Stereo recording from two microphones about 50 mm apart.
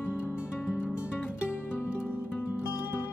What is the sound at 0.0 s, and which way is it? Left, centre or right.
Music, left.